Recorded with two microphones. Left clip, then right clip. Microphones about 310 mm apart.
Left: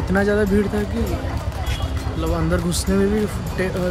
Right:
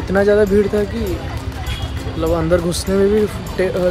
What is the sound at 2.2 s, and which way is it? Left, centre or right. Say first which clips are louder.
Speech: right 7 dB; centre.